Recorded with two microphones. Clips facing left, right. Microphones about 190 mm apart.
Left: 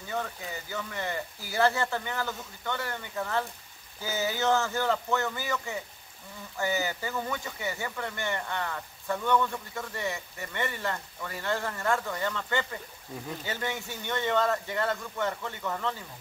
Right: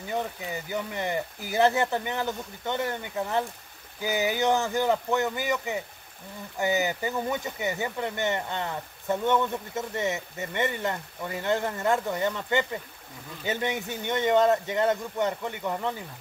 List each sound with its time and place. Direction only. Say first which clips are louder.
0.1 s speech: right 3 dB; 20° right (ahead or behind)